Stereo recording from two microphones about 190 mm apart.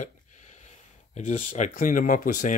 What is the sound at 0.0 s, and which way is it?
Speech, 40° left (ahead or behind).